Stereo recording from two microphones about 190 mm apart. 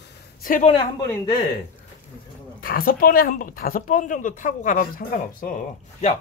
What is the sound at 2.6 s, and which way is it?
Speech, 50° left (ahead or behind).